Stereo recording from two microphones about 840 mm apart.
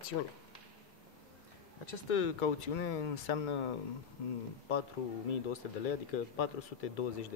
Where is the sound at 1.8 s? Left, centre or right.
Left.